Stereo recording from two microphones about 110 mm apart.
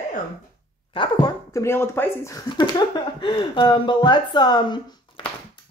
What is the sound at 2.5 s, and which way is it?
Speech, 45° left (ahead or behind).